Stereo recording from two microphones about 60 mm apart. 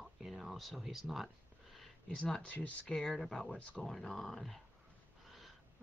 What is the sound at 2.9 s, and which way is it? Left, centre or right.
Speech, centre.